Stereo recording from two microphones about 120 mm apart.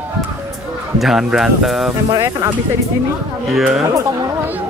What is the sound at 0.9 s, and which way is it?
Speech, centre (ahead or behind).